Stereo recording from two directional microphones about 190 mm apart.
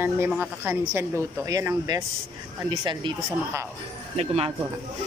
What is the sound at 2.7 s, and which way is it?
Speech, 25° right (ahead or behind).